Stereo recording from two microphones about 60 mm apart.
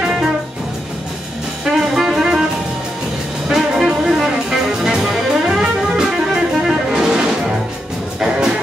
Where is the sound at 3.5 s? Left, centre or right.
Centre.